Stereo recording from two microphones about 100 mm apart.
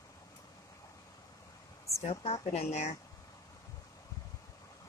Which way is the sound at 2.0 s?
85° left.